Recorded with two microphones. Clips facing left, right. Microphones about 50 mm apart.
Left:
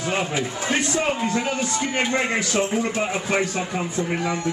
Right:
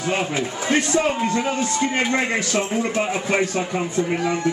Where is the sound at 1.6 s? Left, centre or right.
Centre.